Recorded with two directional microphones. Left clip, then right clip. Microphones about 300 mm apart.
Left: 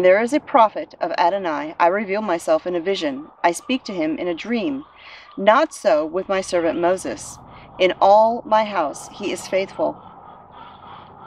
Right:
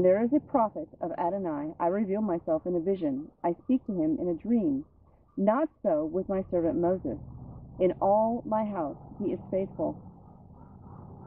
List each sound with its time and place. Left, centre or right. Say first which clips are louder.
0.0 s speech: left 9 dB; centre
3.8 s speech: left 7 dB; centre
4.3 s speech: left 6 dB; centre
8.5 s speech: left 12 dB; centre